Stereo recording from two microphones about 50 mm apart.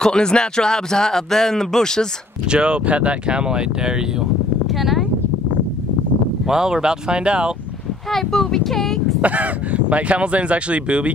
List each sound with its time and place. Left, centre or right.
0.0 s speech: centre
2.4 s speech: centre
4.6 s a sound: centre
6.4 s speech: centre
8.1 s a sound: centre
9.2 s speech: right